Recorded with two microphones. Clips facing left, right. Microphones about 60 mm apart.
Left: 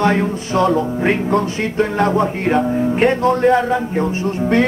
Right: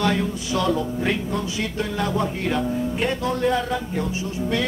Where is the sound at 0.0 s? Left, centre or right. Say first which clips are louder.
Left 6 dB; left.